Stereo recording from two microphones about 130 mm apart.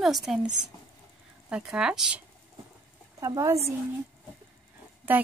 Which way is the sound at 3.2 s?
25° right (ahead or behind).